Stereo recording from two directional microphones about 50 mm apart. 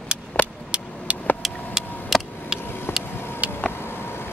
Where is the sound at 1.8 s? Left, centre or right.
Left.